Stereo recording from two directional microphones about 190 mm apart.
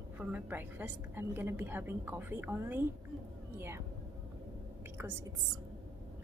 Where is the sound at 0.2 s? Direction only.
10° right (ahead or behind).